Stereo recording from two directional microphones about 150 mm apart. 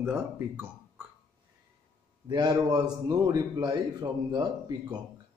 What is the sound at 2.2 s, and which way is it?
A man's voice, 30° right (ahead or behind).